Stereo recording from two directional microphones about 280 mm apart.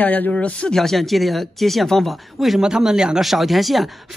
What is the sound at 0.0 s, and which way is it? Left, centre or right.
A man's voice, centre.